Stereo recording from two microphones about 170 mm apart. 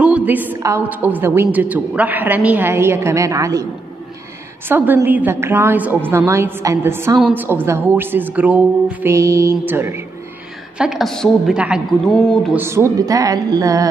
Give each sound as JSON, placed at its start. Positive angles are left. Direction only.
{"t": 0.0, "sound": "a woman's voice", "side_deg": -10}
{"t": 4.6, "sound": "a woman's voice", "side_deg": -15}
{"t": 10.8, "sound": "a woman's voice", "side_deg": 0}
{"t": 12.5, "sound": "speech", "side_deg": -15}